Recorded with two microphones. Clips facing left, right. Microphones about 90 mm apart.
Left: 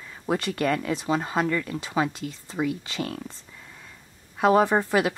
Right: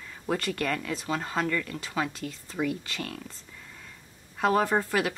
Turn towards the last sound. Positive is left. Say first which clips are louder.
# left 4 dB
turn(degrees=20)  # may be behind; listen again after turning